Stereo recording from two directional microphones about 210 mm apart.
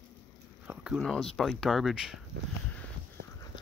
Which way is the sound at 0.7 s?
5° right (ahead or behind).